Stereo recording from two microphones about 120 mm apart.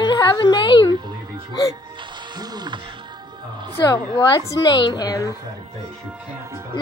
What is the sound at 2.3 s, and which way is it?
Speech, 35° right (ahead or behind).